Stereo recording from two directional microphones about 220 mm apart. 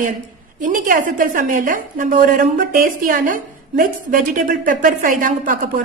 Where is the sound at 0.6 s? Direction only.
35° right (ahead or behind).